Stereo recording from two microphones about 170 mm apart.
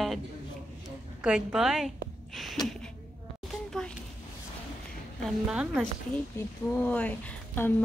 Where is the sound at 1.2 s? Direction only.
5° right (ahead or behind).